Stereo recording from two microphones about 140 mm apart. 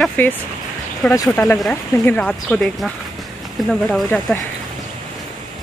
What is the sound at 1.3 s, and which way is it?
Speech, 10° left (ahead or behind).